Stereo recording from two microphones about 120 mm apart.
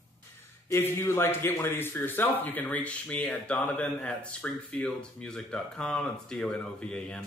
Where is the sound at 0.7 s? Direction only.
20° left (ahead or behind).